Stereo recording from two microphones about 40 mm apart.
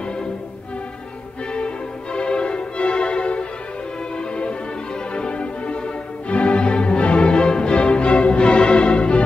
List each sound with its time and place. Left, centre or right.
2.1 s music: left